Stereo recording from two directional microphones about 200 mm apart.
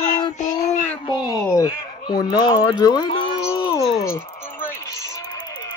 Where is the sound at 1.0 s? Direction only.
20° left (ahead or behind).